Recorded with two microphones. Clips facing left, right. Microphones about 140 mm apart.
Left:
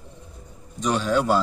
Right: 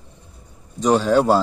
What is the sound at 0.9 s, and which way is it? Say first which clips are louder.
Speech: right 6 dB; 35° right (ahead or behind).